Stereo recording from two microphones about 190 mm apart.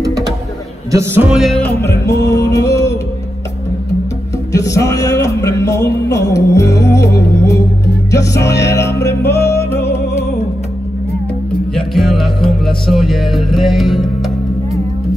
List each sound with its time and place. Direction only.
0.0 s a sound: 20° right (ahead or behind)
0.9 s music: 10° right (ahead or behind); by 2.9 s 15° left (ahead or behind)
4.5 s music: 15° left (ahead or behind)
11.7 s music: centre (ahead or behind)